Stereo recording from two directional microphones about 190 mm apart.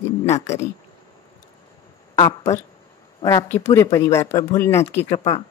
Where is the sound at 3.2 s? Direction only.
15° left (ahead or behind).